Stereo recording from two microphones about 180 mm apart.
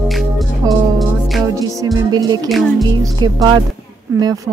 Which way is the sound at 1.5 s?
20° right (ahead or behind).